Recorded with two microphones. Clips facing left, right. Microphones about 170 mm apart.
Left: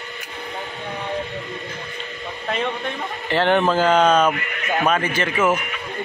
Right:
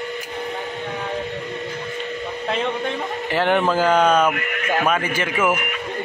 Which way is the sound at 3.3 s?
10° right (ahead or behind).